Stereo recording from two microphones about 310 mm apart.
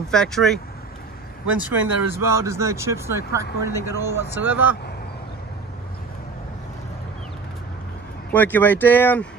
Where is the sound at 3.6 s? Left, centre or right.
Right.